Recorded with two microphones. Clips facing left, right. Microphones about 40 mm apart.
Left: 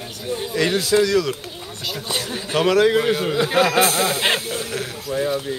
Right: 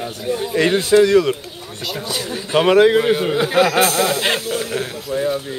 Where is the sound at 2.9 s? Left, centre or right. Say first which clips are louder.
Right 3 dB; centre.